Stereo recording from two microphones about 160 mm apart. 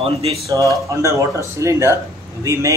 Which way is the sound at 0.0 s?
40° right (ahead or behind).